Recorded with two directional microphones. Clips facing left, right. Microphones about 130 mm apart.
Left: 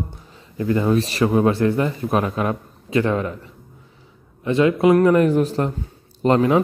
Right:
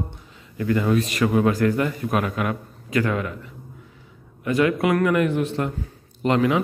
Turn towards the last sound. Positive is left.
turn(degrees=35)  # may be behind; listen again after turning